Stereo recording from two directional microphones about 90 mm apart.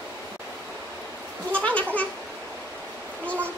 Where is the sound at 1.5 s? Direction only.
15° left (ahead or behind).